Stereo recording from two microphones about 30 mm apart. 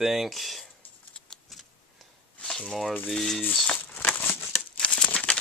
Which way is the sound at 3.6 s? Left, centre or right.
Left.